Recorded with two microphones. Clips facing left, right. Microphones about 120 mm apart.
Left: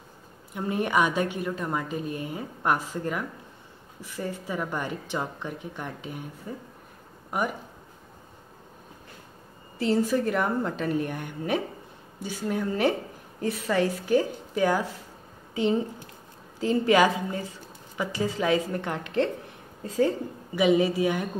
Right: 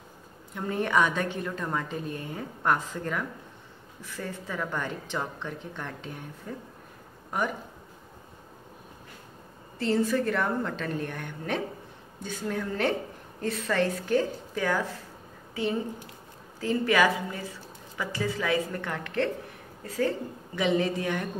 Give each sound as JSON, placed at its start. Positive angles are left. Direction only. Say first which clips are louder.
{"t": 0.6, "sound": "a woman's voice", "louder": "left 1 dB", "side_deg": 15}
{"t": 9.8, "sound": "a woman's voice", "louder": "left 2 dB", "side_deg": 15}